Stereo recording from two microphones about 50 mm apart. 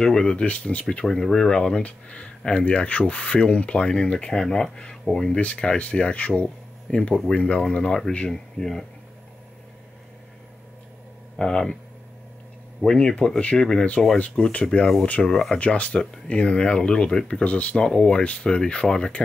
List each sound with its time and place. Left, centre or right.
0.0 s speech: centre
1.0 s speech: centre
5.4 s speech: left
11.3 s speech: centre
12.8 s speech: centre
15.2 s speech: centre
15.6 s speech: left